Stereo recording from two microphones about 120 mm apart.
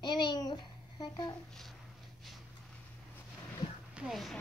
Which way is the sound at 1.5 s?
5° left (ahead or behind).